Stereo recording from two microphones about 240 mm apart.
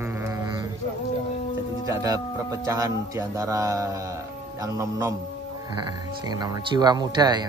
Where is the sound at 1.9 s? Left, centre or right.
Centre.